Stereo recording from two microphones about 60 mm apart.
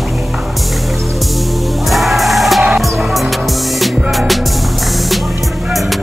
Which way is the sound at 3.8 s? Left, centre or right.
Centre.